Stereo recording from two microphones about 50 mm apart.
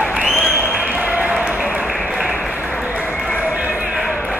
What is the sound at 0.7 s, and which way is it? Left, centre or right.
Basketball bounce, right.